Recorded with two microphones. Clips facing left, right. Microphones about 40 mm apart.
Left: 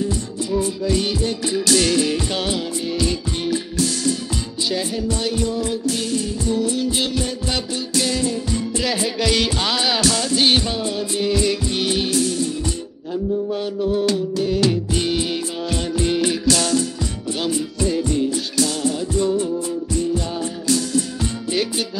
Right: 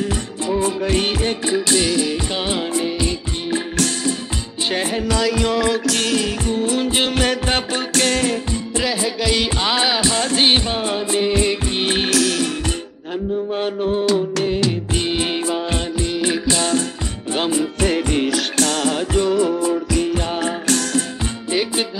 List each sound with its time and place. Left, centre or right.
0.8 s music: right
1.4 s music: right
1.9 s music: centre
2.1 s music: centre
4.6 s music: right
5.0 s music: right
6.4 s music: right
8.8 s music: centre
10.1 s music: right
11.6 s music: right
12.1 s music: right
13.5 s mantra: right
14.5 s music: right
17.7 s music: right